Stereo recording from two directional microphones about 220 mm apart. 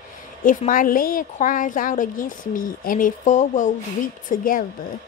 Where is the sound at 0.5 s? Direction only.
40° left (ahead or behind).